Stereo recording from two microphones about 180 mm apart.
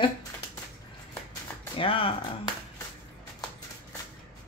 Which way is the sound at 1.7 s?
30° left (ahead or behind).